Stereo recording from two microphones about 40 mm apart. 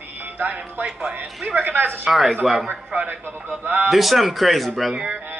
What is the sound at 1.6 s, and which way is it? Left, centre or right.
Speech, right.